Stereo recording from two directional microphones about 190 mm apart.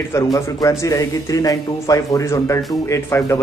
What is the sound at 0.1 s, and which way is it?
Speech, 15° left (ahead or behind).